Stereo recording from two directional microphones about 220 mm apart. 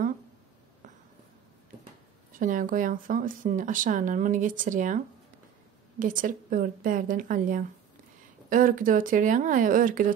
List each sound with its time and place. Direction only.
2.3 s speech: 40° right (ahead or behind)